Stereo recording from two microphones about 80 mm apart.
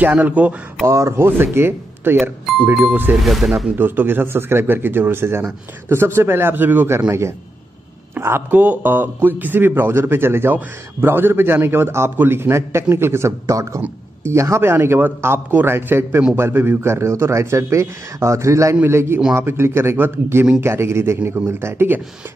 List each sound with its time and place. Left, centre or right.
0.0 s a man's voice: centre
0.8 s a man's voice: right
2.6 s speech: centre
2.9 s a man's voice: right
3.2 s speech: centre
3.7 s a man's voice: right
7.1 s a man's voice: right